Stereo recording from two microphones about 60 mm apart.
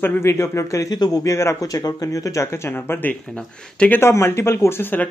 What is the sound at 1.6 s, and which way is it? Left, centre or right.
Speech, left.